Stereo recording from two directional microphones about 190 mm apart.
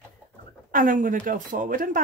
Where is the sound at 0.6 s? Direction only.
45° right (ahead or behind).